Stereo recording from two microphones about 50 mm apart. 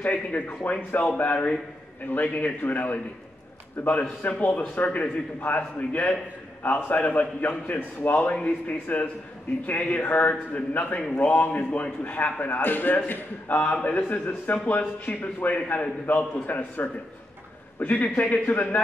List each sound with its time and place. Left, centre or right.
0.0 s a man's voice: left